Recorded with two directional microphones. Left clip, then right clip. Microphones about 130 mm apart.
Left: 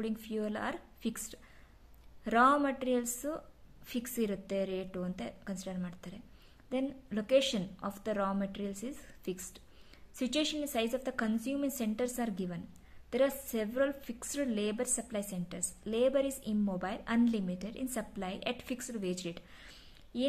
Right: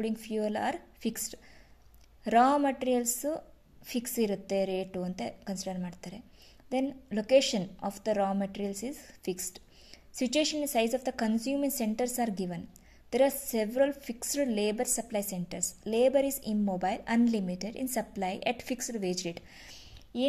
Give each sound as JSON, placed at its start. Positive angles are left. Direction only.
{"t": 0.0, "sound": "a woman's voice", "side_deg": -20}